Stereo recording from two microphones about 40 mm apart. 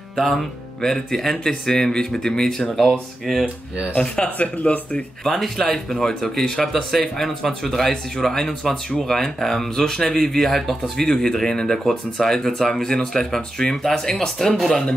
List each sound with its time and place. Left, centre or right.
0.2 s speech: centre
3.4 s speech: right
4.2 s speech: left
5.2 s speech: centre
6.6 s speech: centre